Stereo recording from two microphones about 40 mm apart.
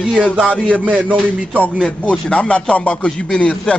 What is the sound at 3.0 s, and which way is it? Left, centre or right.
Speech, left.